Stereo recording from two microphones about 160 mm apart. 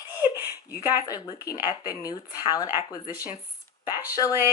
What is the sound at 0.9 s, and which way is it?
Speech, 25° left (ahead or behind).